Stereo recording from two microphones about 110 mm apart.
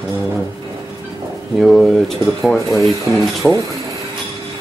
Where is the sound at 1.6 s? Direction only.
Centre (ahead or behind).